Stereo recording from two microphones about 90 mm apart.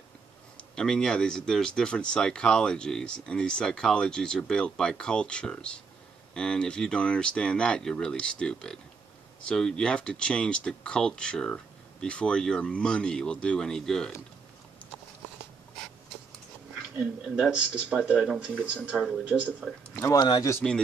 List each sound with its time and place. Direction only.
0.6 s speech: 10° left (ahead or behind)
16.9 s speech: 10° right (ahead or behind)
18.5 s speech: 10° left (ahead or behind)
19.3 s speech: centre (ahead or behind)
20.2 s speech: 55° left (ahead or behind)